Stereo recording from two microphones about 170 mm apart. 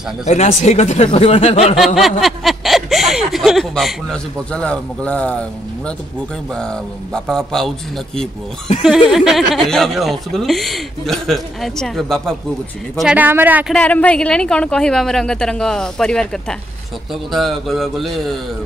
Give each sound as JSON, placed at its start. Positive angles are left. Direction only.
{"t": 0.3, "sound": "speech", "side_deg": 40}
{"t": 2.0, "sound": "speech", "side_deg": 0}
{"t": 9.1, "sound": "speech", "side_deg": 0}
{"t": 13.7, "sound": "speech", "side_deg": 5}